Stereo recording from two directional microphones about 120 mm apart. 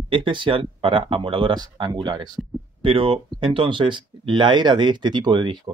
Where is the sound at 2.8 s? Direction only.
50° right (ahead or behind).